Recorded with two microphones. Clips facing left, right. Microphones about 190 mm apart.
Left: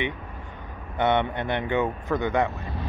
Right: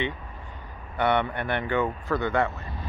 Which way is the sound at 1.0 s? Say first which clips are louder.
Left 1 dB; 20° left (ahead or behind).